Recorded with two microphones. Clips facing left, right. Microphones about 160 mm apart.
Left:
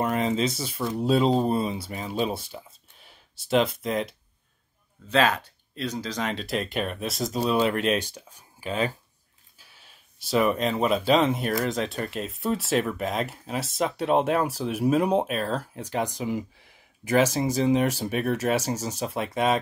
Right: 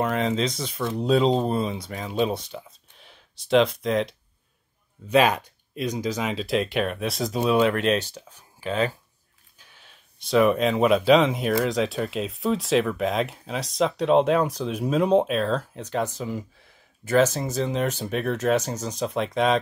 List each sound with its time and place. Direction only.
0.0 s speech: centre (ahead or behind)
5.1 s speech: 15° right (ahead or behind); by 8.0 s centre (ahead or behind)
8.0 s speech: 15° left (ahead or behind)
8.6 s speech: 35° right (ahead or behind)
10.1 s speech: centre (ahead or behind)